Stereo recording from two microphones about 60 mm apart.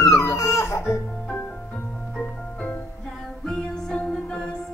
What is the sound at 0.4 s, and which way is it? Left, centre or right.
Music, left.